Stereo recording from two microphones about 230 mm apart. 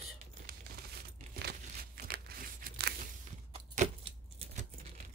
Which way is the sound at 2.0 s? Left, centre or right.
Right.